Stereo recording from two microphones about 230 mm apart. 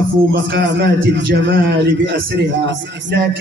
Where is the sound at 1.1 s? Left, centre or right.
Right.